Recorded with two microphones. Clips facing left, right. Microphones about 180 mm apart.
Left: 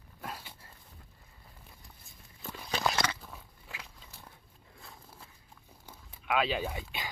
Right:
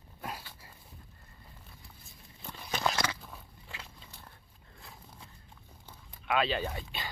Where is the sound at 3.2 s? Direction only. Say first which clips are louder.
Even; centre (ahead or behind).